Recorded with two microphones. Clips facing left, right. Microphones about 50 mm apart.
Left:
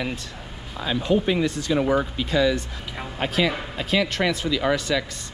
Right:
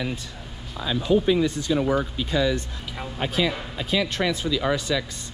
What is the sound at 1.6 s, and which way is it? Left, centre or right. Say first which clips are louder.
Speech: left 1 dB; left.